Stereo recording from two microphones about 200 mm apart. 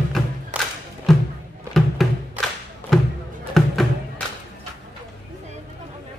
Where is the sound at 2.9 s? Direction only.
Centre (ahead or behind).